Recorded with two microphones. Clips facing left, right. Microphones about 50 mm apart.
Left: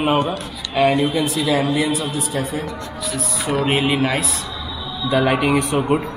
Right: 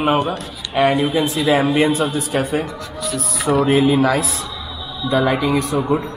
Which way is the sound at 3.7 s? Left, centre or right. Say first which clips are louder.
Right 4 dB; left.